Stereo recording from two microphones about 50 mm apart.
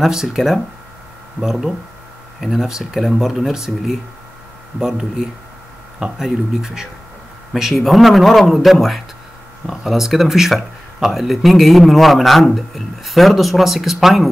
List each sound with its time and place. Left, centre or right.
0.0 s speech: centre
1.4 s speech: centre